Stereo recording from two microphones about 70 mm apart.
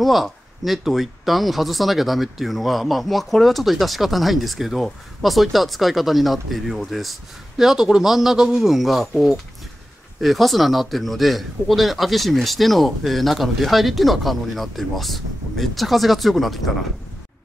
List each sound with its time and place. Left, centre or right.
0.0 s speech: centre